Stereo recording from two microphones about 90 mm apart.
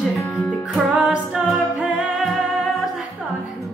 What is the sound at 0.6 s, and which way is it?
Music, 10° right (ahead or behind).